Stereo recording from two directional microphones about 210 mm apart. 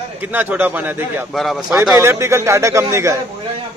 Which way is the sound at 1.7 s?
10° right (ahead or behind).